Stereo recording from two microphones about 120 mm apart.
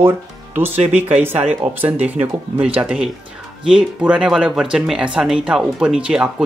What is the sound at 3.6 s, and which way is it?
Speech, 10° right (ahead or behind).